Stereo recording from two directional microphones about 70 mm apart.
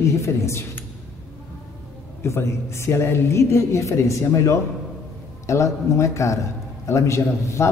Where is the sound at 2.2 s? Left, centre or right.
Left.